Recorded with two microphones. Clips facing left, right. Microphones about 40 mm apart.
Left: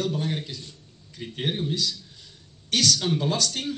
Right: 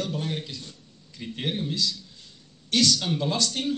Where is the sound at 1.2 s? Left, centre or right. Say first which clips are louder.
Left 1 dB; centre.